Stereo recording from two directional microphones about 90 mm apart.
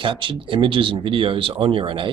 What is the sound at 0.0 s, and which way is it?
Speech, 70° right (ahead or behind).